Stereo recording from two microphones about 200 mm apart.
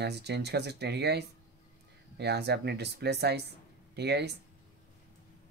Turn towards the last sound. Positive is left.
turn(degrees=-55)  # may be behind; listen again after turning